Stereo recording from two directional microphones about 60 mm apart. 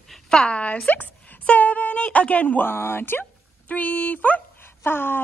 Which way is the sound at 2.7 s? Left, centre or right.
Left.